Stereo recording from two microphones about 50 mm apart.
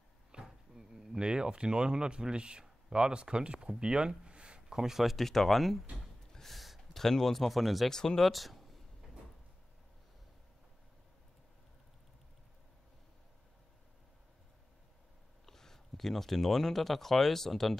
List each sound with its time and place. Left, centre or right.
0.3 s speech: centre
7.9 s speech: centre
8.3 s speech: centre
15.4 s speech: centre